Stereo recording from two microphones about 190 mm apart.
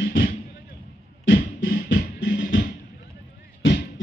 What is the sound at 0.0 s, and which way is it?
Music, 80° left.